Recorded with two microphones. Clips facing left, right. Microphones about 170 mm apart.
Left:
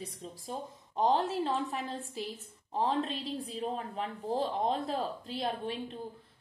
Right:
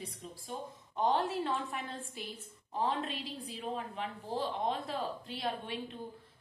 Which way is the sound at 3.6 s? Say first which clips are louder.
Left 1 dB; 35° left (ahead or behind).